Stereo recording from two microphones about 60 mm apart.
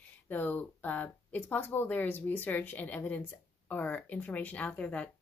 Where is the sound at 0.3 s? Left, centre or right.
Left.